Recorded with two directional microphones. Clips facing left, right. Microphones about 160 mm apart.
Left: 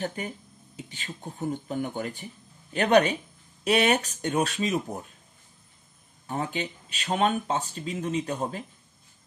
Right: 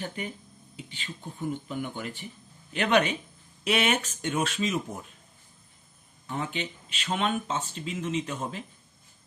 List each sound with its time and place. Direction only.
0.0 s speech: 40° left (ahead or behind)
6.2 s speech: 40° left (ahead or behind)